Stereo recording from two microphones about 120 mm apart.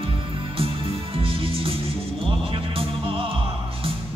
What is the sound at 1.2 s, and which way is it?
Music, 50° right (ahead or behind).